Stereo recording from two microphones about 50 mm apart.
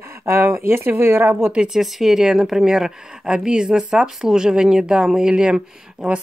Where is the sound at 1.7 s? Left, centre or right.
Centre.